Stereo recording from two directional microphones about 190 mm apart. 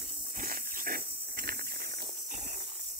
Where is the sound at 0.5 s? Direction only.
50° right (ahead or behind).